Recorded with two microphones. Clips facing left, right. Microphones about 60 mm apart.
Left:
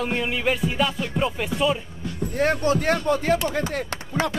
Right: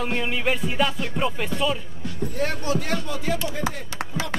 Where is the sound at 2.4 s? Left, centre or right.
Left.